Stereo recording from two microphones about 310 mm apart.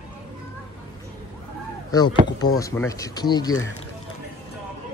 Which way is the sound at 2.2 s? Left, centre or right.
Left.